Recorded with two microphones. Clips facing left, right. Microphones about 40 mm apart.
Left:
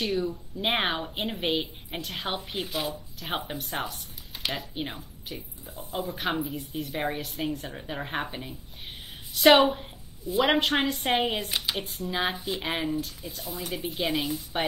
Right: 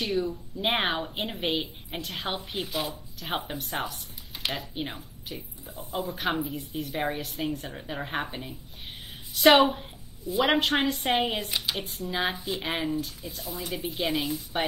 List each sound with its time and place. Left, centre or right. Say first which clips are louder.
0.1 s a woman's voice: even; centre
5.7 s a man's voice: even; right
6.1 s a woman's voice: even; centre
12.4 s speech: even; left
12.6 s a woman's voice: even; centre
13.7 s speech: even; left
13.9 s a woman's voice: even; centre